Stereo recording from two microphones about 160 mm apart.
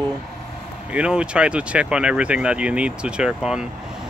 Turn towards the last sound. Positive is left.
turn(degrees=-5)  # may be behind; listen again after turning